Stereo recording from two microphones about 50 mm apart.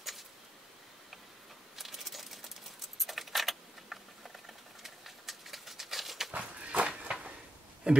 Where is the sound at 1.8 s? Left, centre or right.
Centre.